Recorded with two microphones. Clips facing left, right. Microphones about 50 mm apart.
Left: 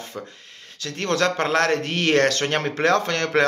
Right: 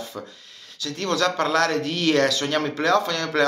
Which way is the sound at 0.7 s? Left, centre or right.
Left.